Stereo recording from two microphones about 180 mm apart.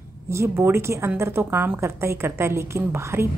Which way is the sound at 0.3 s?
15° right (ahead or behind).